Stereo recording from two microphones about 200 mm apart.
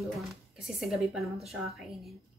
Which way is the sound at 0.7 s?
Centre (ahead or behind).